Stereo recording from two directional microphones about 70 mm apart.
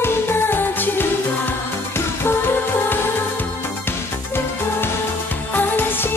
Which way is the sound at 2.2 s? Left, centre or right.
Left.